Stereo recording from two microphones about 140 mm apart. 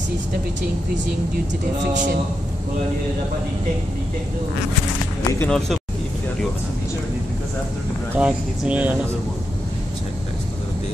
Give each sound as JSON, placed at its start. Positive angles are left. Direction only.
{"t": 5.4, "sound": "speech", "side_deg": 5}
{"t": 8.1, "sound": "speech", "side_deg": -10}